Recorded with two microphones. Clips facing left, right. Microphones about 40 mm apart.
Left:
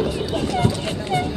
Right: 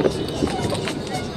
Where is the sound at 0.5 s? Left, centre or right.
Left.